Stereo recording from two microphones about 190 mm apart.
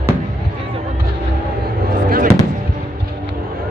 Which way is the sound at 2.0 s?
50° right (ahead or behind).